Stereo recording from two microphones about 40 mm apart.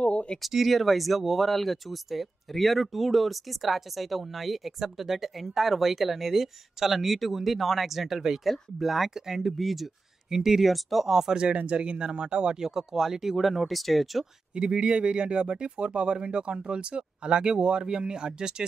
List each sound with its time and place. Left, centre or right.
0.0 s a sound: left
0.5 s speech: centre
11.1 s speech: centre
11.3 s speech: right; by 14.2 s centre
14.5 s speech: right